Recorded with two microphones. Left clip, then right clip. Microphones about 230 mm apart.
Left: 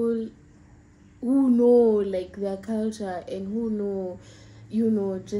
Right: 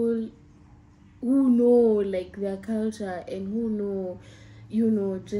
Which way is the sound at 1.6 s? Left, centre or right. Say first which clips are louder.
Left 2 dB; centre.